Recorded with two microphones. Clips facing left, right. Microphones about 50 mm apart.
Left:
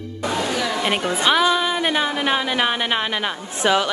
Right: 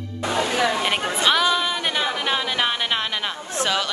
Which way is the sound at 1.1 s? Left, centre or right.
Centre.